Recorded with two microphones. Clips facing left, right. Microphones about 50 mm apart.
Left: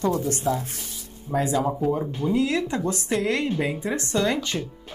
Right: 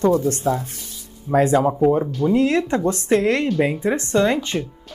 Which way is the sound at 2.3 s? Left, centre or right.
Right.